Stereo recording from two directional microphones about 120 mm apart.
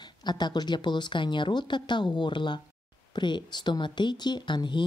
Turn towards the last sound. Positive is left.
turn(degrees=40)  # may be behind; listen again after turning